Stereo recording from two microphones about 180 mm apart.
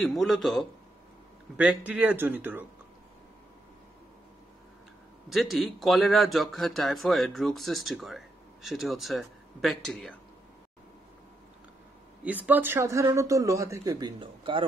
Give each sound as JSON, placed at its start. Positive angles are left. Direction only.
{"t": 0.0, "sound": "speech", "side_deg": 0}
{"t": 5.3, "sound": "speech", "side_deg": 0}
{"t": 12.2, "sound": "speech", "side_deg": -10}